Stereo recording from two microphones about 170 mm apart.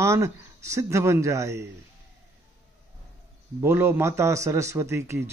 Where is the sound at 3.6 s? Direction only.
15° right (ahead or behind).